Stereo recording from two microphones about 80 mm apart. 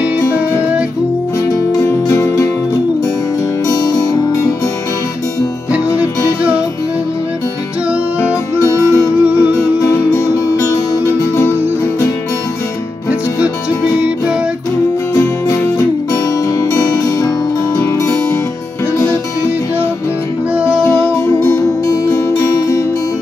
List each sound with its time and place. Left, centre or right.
0.6 s music: centre
2.0 s music: left
8.5 s music: left
9.2 s music: centre
9.8 s music: left
15.1 s music: left
17.7 s music: left
20.9 s music: left